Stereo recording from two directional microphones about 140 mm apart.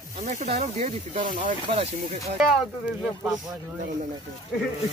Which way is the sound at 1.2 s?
70° right (ahead or behind).